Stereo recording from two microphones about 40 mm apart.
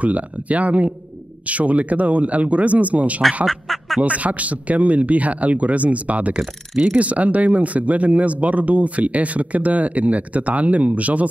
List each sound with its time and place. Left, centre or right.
0.0 s speech: right
3.4 s quack: centre
4.0 s speech: right